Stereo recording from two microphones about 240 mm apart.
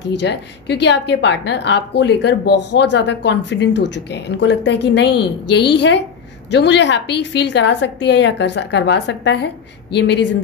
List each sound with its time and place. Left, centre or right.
0.1 s a woman's voice: left